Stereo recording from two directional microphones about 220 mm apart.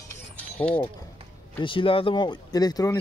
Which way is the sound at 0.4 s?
5° left (ahead or behind).